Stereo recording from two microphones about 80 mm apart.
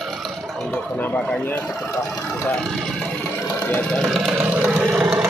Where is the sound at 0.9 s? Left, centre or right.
Centre.